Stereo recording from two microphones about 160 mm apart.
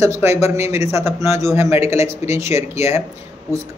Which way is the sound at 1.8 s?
40° left (ahead or behind).